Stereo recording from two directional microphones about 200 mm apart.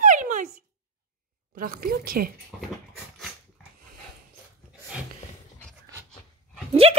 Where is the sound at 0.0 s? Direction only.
40° right (ahead or behind).